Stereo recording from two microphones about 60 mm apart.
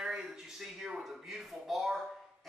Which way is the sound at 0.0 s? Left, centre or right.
Centre.